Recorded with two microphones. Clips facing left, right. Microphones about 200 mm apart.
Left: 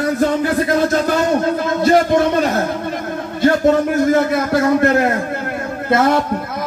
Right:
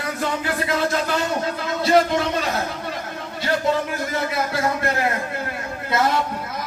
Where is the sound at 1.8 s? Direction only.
50° left (ahead or behind).